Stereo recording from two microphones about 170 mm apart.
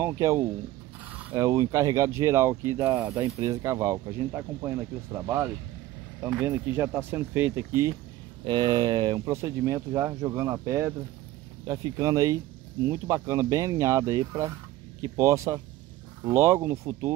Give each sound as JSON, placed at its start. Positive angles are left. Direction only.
{"t": 0.0, "sound": "speech", "side_deg": -15}